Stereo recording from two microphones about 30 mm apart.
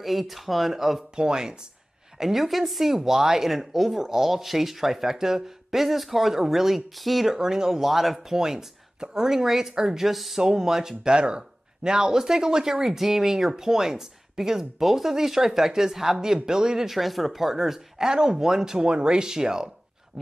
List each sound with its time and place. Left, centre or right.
0.0 s speech: centre
1.1 s speech: right
2.1 s speech: centre
7.3 s speech: right
7.8 s speech: centre
8.3 s speech: centre
10.4 s speech: centre
11.1 s speech: right
16.9 s speech: centre
17.9 s speech: right